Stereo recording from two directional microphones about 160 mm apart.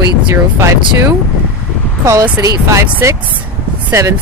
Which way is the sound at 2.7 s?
15° right (ahead or behind).